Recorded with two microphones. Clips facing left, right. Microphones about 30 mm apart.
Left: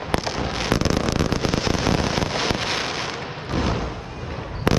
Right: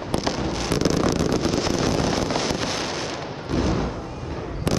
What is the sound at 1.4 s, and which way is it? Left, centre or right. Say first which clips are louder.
Wind noise: even; centre.